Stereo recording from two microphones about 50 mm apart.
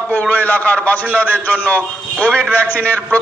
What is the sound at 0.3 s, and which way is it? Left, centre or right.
A man's voice, left.